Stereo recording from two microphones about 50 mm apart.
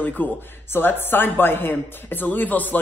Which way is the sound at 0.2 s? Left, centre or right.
Left.